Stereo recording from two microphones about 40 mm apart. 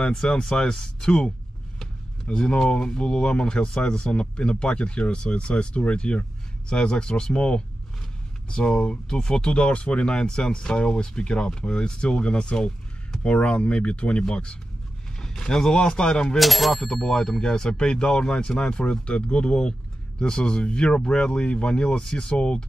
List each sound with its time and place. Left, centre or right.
0.1 s speech: centre
16.3 s speech: centre
16.8 s speech: centre